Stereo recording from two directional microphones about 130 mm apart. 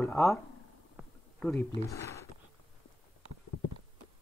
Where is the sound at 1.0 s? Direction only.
5° right (ahead or behind).